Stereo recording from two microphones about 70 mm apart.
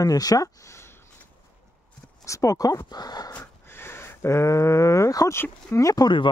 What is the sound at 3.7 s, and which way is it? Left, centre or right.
Speech, left.